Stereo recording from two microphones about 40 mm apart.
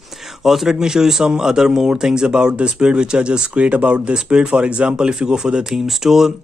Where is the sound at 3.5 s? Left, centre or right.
Right.